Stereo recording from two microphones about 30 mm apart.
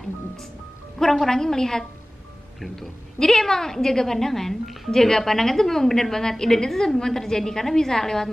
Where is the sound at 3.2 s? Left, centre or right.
Centre.